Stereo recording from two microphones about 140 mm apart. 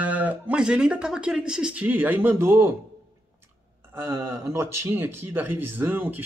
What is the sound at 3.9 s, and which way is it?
Speech, 15° right (ahead or behind).